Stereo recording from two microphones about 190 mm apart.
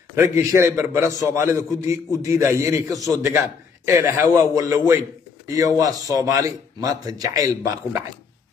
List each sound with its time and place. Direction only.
0.1 s a man's voice: 15° right (ahead or behind)